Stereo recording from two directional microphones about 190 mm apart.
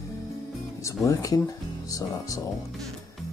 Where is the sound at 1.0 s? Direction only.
20° left (ahead or behind).